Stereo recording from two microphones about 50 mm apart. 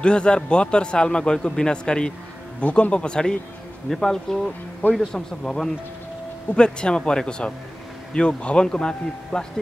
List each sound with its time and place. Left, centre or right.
0.0 s a man's voice: centre